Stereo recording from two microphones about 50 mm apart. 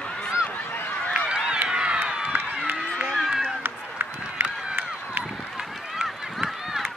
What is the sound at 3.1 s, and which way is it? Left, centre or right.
Run, centre.